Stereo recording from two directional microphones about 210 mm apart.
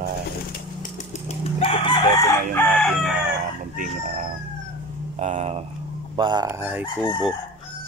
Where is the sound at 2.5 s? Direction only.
5° left (ahead or behind).